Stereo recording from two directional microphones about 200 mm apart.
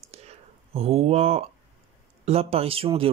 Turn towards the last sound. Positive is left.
turn(degrees=-25)  # may be behind; listen again after turning